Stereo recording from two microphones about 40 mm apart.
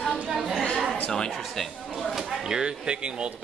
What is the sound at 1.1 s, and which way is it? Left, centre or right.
Speech, centre.